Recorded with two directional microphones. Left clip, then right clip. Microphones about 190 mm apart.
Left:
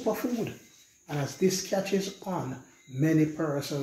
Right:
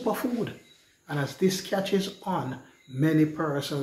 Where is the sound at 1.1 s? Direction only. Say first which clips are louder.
Right 1 dB; 5° right (ahead or behind).